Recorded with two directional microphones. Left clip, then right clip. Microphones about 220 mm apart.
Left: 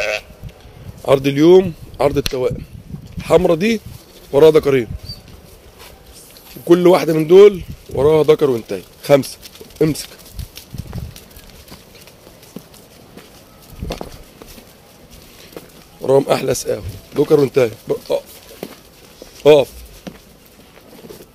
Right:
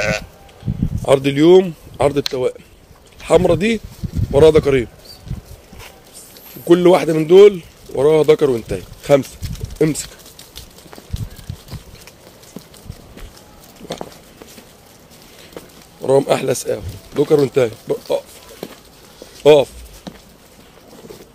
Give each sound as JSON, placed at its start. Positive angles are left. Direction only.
{"t": 1.0, "sound": "speech", "side_deg": 0}
{"t": 6.6, "sound": "speech", "side_deg": 0}
{"t": 16.0, "sound": "speech", "side_deg": 0}
{"t": 19.4, "sound": "speech", "side_deg": 0}
{"t": 20.1, "sound": "a sound", "side_deg": 30}